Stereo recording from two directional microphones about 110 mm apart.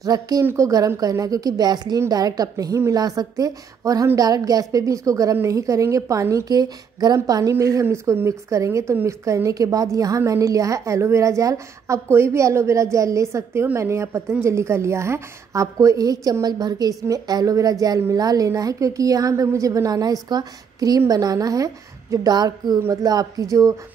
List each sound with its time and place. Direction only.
0.0 s a woman's voice: 35° right (ahead or behind)